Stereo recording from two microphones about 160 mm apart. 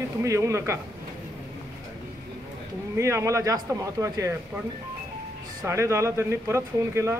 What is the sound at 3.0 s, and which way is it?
A man's voice, 15° right (ahead or behind).